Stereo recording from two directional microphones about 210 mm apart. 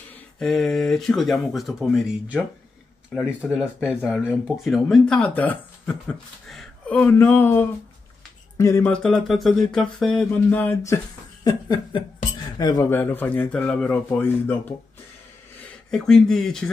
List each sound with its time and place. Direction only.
0.1 s speech: centre (ahead or behind)
11.4 s a sound: 20° left (ahead or behind)
12.4 s speech: 20° left (ahead or behind)
15.9 s speech: centre (ahead or behind)